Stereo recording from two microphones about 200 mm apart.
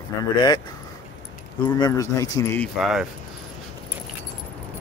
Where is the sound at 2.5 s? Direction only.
Centre (ahead or behind).